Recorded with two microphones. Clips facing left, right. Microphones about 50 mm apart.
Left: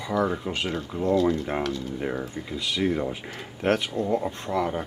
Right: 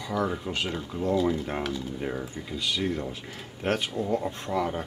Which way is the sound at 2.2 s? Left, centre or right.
Centre.